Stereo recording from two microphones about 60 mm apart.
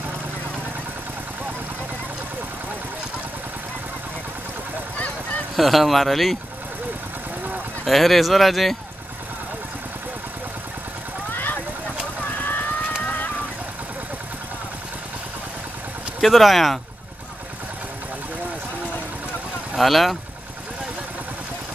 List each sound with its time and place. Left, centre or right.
4.9 s honk: left
5.6 s speech: centre
7.8 s speech: centre
11.3 s clip-clop: left
16.2 s speech: centre
19.8 s speech: centre